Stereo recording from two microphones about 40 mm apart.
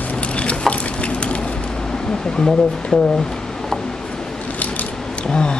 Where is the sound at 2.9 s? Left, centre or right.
Left.